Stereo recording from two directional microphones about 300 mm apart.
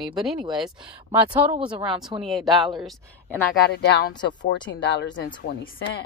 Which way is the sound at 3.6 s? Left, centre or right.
Left.